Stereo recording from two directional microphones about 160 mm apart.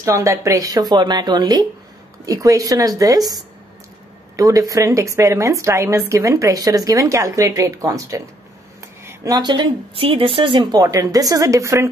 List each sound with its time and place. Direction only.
0.0 s speech: 20° right (ahead or behind)